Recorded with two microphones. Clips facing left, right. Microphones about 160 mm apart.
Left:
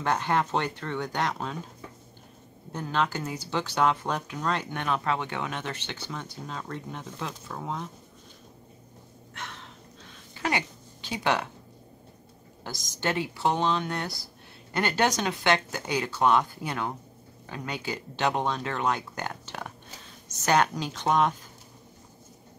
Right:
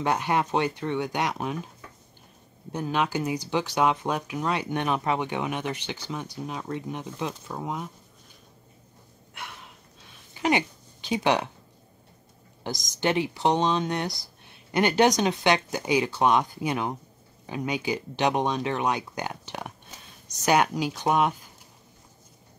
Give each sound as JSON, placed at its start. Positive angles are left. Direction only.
{"t": 0.0, "sound": "speech", "side_deg": -15}
{"t": 2.7, "sound": "speech", "side_deg": -15}
{"t": 9.3, "sound": "a sound", "side_deg": -10}
{"t": 12.6, "sound": "speech", "side_deg": -15}